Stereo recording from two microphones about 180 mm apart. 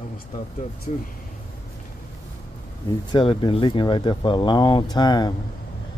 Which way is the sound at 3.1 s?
30° left (ahead or behind).